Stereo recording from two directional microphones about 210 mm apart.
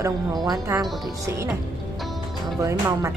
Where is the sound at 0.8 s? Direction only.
Centre (ahead or behind).